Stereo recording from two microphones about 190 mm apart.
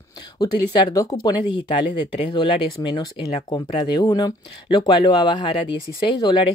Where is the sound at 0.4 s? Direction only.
20° left (ahead or behind).